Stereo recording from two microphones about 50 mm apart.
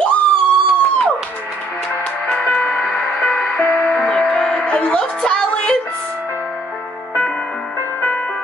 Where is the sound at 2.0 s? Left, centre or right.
Left.